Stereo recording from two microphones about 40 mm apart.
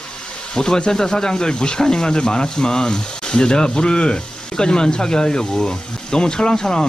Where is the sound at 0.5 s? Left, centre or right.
Centre.